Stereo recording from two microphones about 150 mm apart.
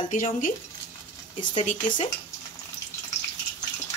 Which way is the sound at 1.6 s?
55° left (ahead or behind).